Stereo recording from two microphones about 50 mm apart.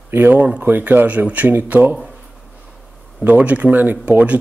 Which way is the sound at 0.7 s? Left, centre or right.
Right.